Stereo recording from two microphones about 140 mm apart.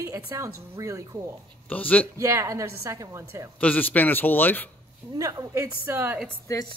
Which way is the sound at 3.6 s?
10° left (ahead or behind).